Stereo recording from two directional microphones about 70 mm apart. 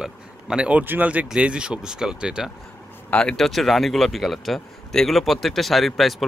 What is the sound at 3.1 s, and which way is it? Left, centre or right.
Speech, centre.